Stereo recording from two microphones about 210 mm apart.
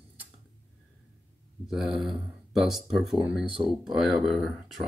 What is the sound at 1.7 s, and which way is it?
Speech, centre (ahead or behind).